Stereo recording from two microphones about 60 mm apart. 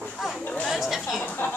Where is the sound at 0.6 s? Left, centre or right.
Centre.